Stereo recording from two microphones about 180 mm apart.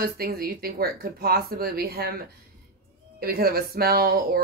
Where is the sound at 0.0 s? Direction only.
55° right (ahead or behind).